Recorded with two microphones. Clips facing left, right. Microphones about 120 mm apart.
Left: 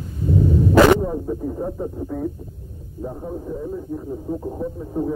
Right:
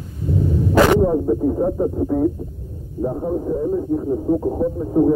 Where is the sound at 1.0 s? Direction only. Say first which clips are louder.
Right 8 dB; 30° right (ahead or behind).